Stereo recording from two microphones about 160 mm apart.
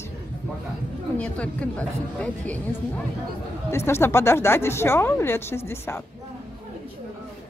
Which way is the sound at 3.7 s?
15° left (ahead or behind).